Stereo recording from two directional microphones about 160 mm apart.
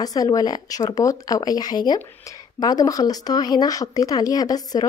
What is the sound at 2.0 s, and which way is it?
Speech, 15° left (ahead or behind).